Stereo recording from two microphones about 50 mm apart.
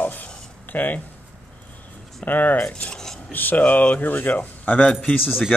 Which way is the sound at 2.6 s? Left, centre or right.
Left.